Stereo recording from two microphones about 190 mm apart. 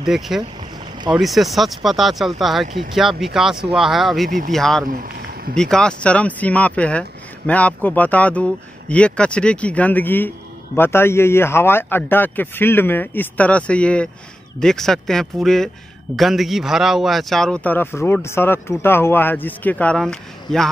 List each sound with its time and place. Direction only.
0.0 s speech: centre (ahead or behind)
4.8 s boat: 50° right (ahead or behind)
5.6 s speech: 5° left (ahead or behind)